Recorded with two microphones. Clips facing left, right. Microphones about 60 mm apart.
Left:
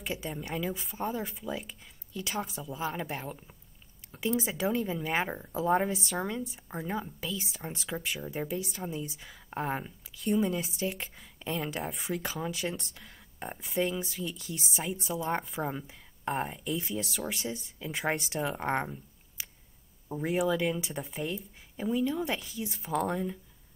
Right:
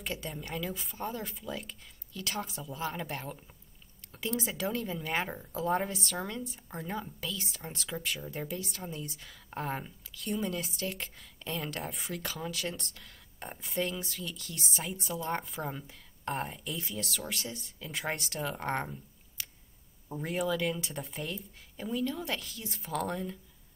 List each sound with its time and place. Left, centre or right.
0.0 s speech: centre
5.3 s speech: centre
10.4 s speech: centre
16.8 s speech: centre